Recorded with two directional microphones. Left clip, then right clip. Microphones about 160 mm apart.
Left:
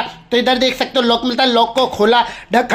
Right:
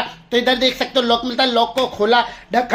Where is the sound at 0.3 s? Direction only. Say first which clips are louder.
Left 2 dB; 25° left (ahead or behind).